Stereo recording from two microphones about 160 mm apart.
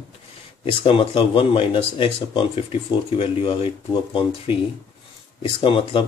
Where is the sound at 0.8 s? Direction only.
35° left (ahead or behind).